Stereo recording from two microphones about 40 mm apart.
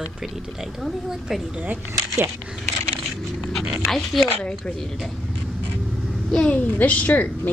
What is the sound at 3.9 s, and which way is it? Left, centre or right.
Speech, centre.